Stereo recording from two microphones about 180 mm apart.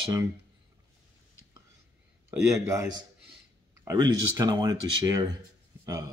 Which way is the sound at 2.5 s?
15° right (ahead or behind).